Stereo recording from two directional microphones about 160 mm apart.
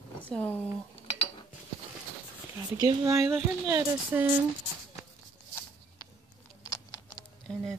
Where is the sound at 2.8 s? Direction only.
20° right (ahead or behind).